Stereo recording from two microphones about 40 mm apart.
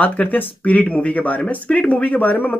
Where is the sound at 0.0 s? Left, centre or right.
Left.